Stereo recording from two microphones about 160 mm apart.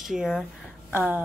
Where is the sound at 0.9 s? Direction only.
10° right (ahead or behind).